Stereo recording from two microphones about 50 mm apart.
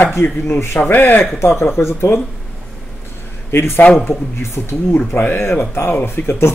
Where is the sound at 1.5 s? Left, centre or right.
Left.